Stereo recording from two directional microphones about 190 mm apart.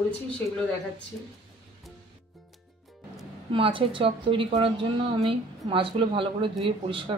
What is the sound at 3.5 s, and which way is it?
A woman's voice, 25° right (ahead or behind).